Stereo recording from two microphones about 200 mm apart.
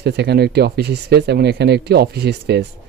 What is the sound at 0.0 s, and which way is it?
Speech, 55° right (ahead or behind).